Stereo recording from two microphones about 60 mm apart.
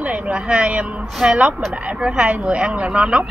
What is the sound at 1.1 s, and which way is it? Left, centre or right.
Speech, centre.